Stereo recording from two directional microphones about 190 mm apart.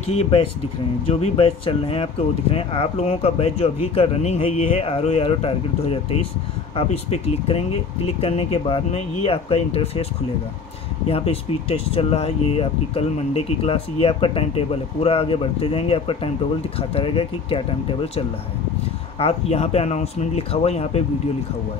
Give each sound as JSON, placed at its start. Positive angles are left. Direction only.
{"t": 0.1, "sound": "speech", "side_deg": 30}
{"t": 11.1, "sound": "speech", "side_deg": 30}